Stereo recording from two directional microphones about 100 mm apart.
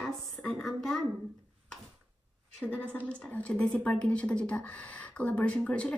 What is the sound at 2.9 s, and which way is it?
Speech, 15° left (ahead or behind).